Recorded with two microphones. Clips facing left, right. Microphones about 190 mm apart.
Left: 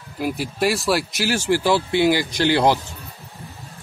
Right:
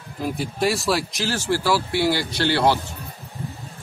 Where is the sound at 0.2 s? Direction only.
Centre (ahead or behind).